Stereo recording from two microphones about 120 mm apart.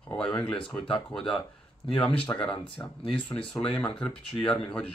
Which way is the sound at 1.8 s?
50° left (ahead or behind).